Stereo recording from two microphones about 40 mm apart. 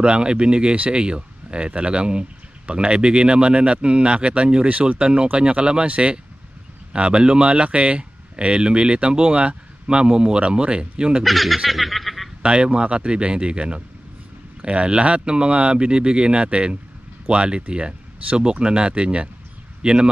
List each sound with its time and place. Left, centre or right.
0.0 s speech: right
4.6 s speech: right
4.9 s speech: right
11.2 s snicker: centre
12.4 s speech: right